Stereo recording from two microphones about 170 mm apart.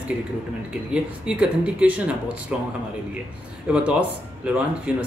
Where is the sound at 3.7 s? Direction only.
10° right (ahead or behind).